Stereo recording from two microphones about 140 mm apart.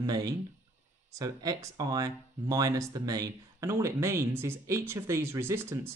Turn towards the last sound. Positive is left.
turn(degrees=-20)  # may be behind; listen again after turning